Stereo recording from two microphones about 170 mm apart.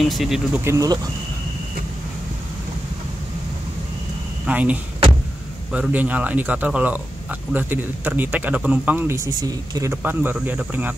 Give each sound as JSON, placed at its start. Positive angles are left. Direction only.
{"t": 0.0, "sound": "speech", "side_deg": 0}
{"t": 0.7, "sound": "speech", "side_deg": -20}
{"t": 4.5, "sound": "speech", "side_deg": -10}